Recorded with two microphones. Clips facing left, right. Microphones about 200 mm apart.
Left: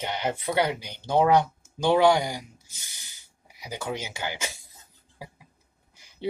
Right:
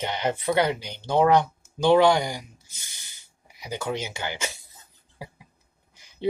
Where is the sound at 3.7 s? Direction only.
10° left (ahead or behind).